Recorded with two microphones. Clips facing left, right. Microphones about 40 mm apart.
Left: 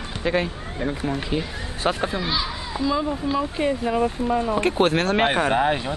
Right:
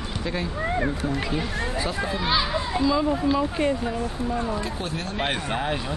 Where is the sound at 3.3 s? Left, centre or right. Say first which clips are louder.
Even; centre.